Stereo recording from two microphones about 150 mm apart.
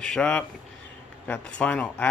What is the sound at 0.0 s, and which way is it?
Speech, 5° left (ahead or behind).